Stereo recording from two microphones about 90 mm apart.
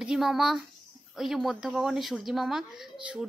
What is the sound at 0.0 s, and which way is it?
A woman's voice, 5° right (ahead or behind).